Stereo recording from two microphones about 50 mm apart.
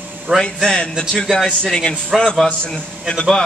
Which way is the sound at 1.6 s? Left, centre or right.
Centre.